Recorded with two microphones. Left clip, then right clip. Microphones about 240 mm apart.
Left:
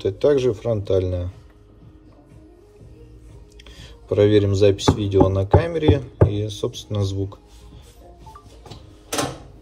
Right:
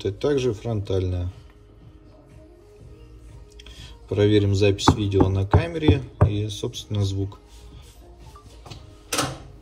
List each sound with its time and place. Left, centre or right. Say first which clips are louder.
0.0 s speech: left 5 dB; centre
3.6 s speech: left 5 dB; centre